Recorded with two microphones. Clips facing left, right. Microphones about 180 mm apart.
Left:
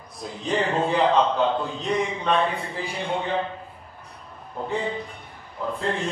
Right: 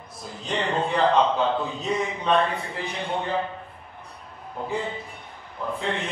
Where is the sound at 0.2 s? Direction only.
Centre (ahead or behind).